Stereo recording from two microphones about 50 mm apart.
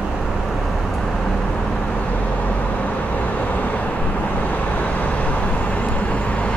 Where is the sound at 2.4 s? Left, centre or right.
Left.